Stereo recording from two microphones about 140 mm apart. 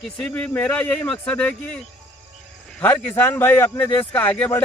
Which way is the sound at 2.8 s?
15° left (ahead or behind).